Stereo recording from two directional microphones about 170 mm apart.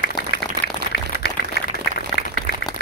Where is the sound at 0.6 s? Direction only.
90° left.